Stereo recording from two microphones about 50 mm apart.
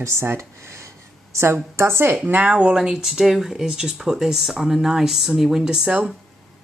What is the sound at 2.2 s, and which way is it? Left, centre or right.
Speech, right.